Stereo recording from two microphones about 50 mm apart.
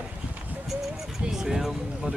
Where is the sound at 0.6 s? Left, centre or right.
Centre.